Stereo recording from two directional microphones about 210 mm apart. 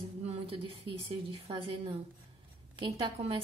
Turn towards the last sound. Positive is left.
turn(degrees=-25)  # may be behind; listen again after turning